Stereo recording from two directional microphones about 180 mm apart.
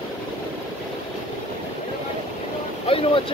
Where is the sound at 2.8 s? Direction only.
30° left (ahead or behind).